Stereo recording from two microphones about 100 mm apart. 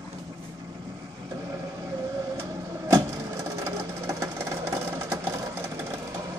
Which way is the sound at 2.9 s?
30° right (ahead or behind).